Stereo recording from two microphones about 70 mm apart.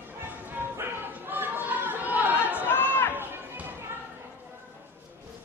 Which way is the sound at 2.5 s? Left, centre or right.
Left.